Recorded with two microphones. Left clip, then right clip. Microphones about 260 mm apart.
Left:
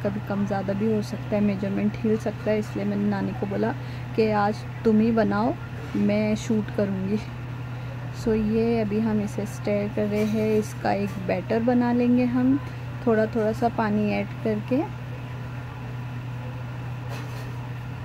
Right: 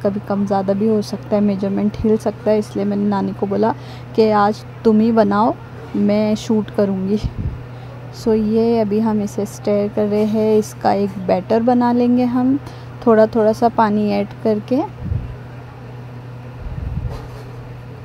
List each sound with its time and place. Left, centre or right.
0.0 s speech: centre
8.3 s speech: centre